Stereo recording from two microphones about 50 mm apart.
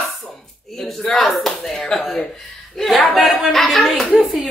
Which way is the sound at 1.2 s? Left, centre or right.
Centre.